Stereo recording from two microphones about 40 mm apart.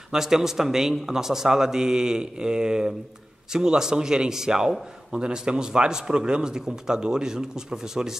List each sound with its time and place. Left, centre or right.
0.1 s a man's voice: centre